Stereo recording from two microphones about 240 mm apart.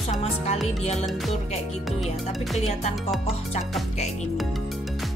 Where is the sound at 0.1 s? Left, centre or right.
Left.